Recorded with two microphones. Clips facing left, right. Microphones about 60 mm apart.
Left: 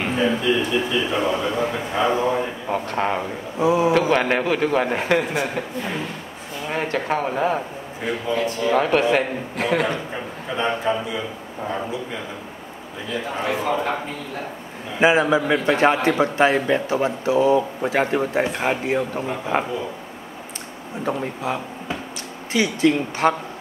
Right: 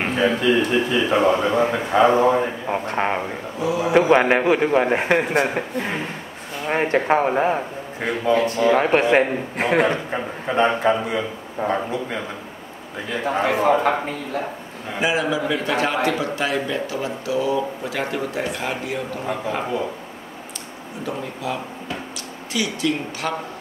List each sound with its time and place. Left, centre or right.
0.4 s a man's voice: right
0.9 s a man's voice: right
2.4 s a man's voice: right
3.5 s a man's voice: left
3.9 s a man's voice: right
8.0 s a man's voice: right
8.7 s a man's voice: right
10.8 s speech: right
11.1 s speech: right
13.1 s a man's voice: right
15.0 s a man's voice: left
21.0 s a man's voice: left